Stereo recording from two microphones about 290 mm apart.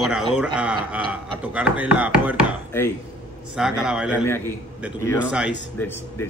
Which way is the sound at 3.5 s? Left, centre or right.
Centre.